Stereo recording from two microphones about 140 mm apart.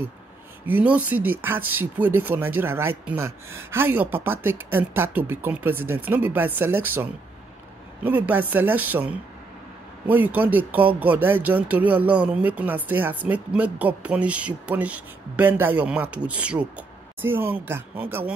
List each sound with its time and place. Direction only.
0.7 s speech: 10° right (ahead or behind)